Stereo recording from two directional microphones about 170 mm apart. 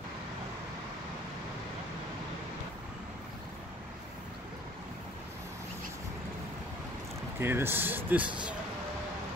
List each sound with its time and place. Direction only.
7.3 s speech: 15° right (ahead or behind)